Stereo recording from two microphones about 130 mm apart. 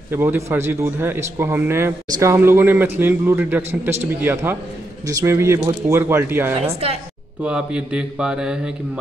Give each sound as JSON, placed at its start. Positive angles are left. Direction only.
{"t": 0.1, "sound": "a man's voice", "side_deg": -15}
{"t": 6.6, "sound": "a woman's voice", "side_deg": -50}
{"t": 7.4, "sound": "a man's voice", "side_deg": -5}